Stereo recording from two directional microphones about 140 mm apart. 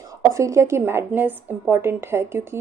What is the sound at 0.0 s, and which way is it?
A woman's voice, 25° right (ahead or behind).